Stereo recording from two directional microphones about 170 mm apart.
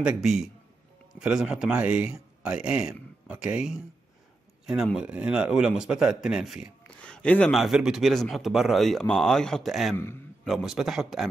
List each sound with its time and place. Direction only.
0.0 s a man's voice: 5° right (ahead or behind)
4.9 s a man's voice: 5° right (ahead or behind)